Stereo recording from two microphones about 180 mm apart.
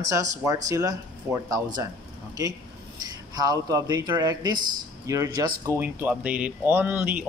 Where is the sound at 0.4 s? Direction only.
15° right (ahead or behind).